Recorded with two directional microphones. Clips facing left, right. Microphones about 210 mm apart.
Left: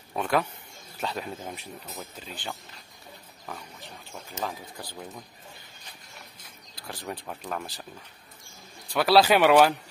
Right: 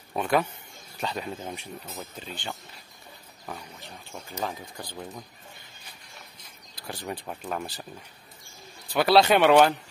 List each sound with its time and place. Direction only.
0.1 s speech: 5° right (ahead or behind)
6.7 s speech: centre (ahead or behind)
8.9 s speech: centre (ahead or behind)